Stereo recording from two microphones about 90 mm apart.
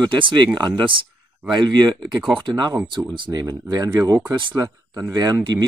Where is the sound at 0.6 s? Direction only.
55° right (ahead or behind).